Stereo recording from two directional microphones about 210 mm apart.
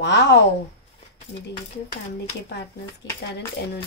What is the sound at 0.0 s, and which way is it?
Speech, 55° left (ahead or behind).